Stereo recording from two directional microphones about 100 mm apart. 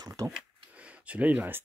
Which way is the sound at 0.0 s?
40° right (ahead or behind).